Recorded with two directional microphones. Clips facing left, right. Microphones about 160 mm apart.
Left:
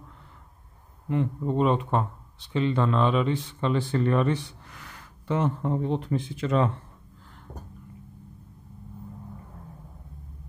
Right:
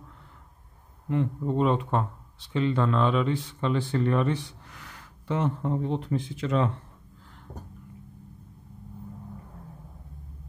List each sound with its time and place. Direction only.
1.1 s speech: 15° left (ahead or behind)
3.9 s speech: 50° left (ahead or behind)